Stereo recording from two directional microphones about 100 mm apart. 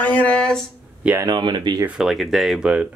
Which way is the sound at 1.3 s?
45° right (ahead or behind).